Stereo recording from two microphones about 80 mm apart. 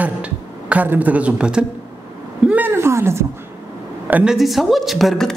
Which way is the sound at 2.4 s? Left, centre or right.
Right.